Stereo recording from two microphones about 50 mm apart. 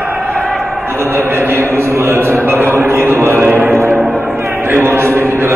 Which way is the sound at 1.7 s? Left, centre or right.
Right.